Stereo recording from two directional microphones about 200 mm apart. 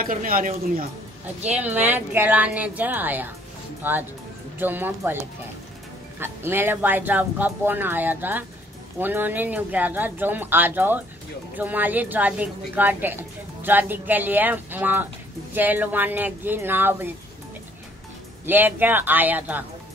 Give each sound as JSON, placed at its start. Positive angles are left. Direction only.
{"t": 0.0, "sound": "speech", "side_deg": -45}
{"t": 1.6, "sound": "a woman's voice", "side_deg": -10}
{"t": 6.1, "sound": "a woman's voice", "side_deg": -10}
{"t": 18.4, "sound": "a woman's voice", "side_deg": -10}